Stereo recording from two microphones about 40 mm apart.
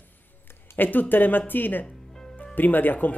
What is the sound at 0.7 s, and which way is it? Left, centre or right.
Speech, left.